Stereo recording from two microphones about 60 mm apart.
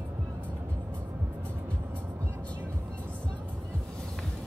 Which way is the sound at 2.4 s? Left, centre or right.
Left.